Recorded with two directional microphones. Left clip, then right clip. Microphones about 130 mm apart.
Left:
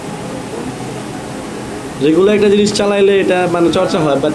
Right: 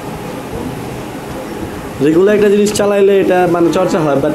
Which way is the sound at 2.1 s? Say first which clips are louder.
Right 1 dB; 40° right (ahead or behind).